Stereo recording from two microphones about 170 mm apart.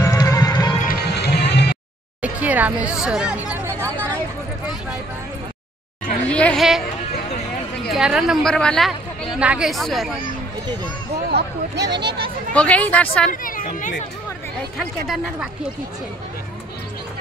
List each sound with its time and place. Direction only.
0.0 s music: 20° left (ahead or behind)
0.8 s music: 70° left (ahead or behind)
2.2 s a sound: 10° right (ahead or behind)
6.2 s a woman's voice: 5° left (ahead or behind)
7.9 s a woman's voice: 5° right (ahead or behind)
11.2 s speech: 80° right
12.5 s speech: 10° left (ahead or behind)
13.3 s speech: 55° left (ahead or behind)
14.8 s a woman's voice: centre (ahead or behind)